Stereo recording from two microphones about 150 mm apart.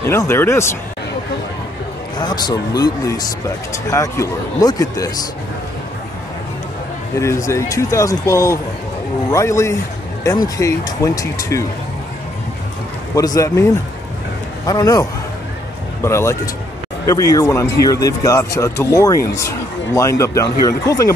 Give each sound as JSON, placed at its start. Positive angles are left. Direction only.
{"t": 0.0, "sound": "speech", "side_deg": 15}
{"t": 2.1, "sound": "speech", "side_deg": 30}
{"t": 7.2, "sound": "speech", "side_deg": 20}
{"t": 13.1, "sound": "speech", "side_deg": 25}
{"t": 14.7, "sound": "speech", "side_deg": 25}